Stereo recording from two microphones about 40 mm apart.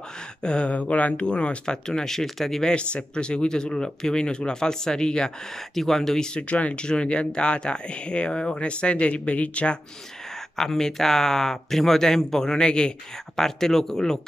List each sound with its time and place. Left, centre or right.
0.4 s speech: left; by 2.7 s centre
2.7 s speech: left
5.8 s speech: centre
6.4 s speech: left
10.5 s speech: centre
13.4 s speech: centre